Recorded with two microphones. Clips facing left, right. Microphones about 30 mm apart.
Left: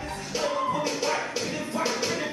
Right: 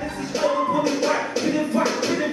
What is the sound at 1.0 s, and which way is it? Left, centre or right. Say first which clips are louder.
Music: right 6 dB; centre.